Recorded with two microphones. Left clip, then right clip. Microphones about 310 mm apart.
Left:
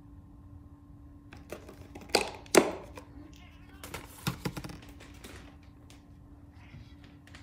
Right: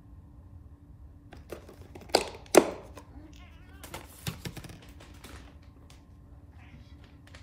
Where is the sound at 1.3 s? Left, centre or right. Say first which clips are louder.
Right 1 dB; centre.